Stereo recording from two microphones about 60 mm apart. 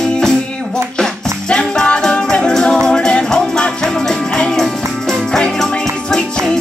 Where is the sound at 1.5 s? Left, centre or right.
Centre.